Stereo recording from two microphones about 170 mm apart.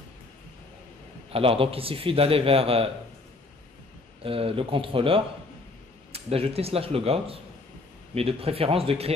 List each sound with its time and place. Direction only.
1.3 s a man's voice: 35° right (ahead or behind)
4.2 s a man's voice: 35° right (ahead or behind)